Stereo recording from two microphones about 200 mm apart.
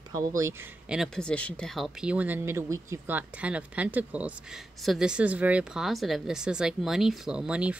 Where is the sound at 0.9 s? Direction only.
Centre (ahead or behind).